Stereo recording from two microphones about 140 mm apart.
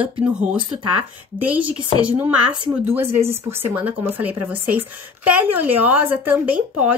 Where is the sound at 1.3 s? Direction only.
10° right (ahead or behind).